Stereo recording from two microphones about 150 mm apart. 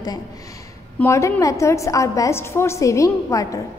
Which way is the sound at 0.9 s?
15° left (ahead or behind).